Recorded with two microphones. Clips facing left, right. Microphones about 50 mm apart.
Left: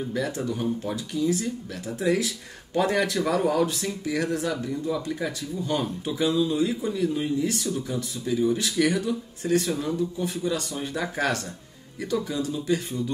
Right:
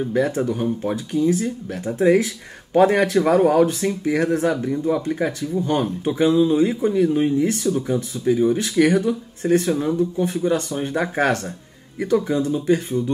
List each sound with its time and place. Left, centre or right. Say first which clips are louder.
0.1 s speech: right 9 dB; right